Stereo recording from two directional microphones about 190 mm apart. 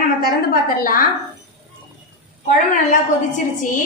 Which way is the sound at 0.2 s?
50° left (ahead or behind).